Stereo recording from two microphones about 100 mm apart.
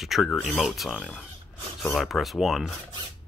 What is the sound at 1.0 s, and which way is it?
Speech, 15° left (ahead or behind).